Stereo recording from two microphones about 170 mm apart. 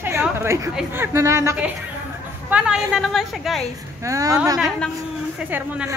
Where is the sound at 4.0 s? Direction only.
20° right (ahead or behind).